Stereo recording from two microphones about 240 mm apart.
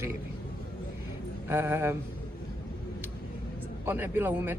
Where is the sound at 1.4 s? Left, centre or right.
Centre.